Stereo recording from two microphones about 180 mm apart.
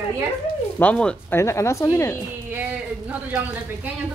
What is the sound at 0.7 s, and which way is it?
A woman's voice, 5° left (ahead or behind).